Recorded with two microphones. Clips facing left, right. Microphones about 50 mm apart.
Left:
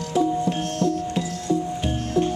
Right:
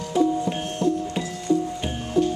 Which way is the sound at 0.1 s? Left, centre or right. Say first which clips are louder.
Even; centre.